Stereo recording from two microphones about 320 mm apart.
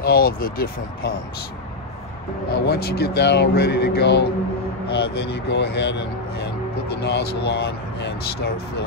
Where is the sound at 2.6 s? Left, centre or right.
Left.